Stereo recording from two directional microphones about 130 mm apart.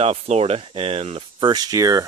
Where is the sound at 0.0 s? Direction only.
55° right (ahead or behind).